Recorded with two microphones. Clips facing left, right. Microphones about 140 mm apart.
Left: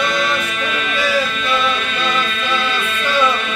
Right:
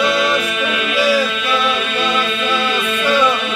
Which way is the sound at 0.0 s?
10° right (ahead or behind).